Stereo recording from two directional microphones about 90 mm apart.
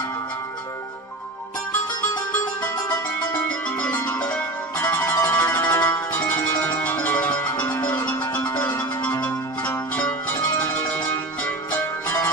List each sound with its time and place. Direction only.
3.4 s music: 15° left (ahead or behind)
8.5 s zither: 20° left (ahead or behind)
10.3 s music: 30° left (ahead or behind)
10.8 s music: 15° left (ahead or behind)